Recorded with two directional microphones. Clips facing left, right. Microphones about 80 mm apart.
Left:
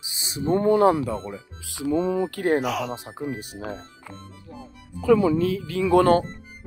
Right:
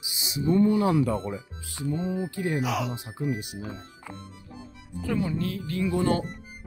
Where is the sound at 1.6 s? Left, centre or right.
Left.